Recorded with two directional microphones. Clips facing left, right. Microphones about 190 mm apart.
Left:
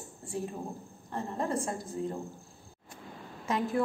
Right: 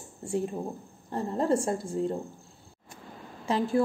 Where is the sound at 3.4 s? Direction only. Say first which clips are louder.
Right 4 dB; 30° right (ahead or behind).